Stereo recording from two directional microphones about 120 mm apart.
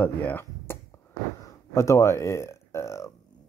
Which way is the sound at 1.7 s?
25° left (ahead or behind).